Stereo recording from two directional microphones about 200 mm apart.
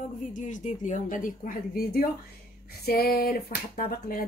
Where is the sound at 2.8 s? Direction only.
50° left (ahead or behind).